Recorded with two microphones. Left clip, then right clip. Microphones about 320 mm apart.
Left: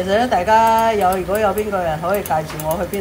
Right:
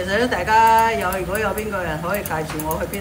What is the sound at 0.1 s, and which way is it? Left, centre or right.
Speech, centre.